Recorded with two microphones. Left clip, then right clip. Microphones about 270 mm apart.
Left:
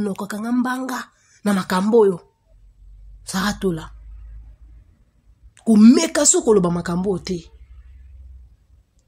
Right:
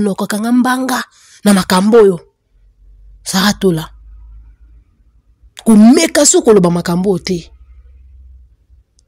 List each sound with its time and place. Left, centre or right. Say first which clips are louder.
0.0 s speech: right 10 dB; right
5.5 s speech: right 5 dB; right